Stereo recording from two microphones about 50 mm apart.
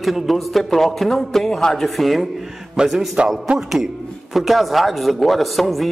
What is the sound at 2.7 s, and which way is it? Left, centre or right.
A man's voice, centre.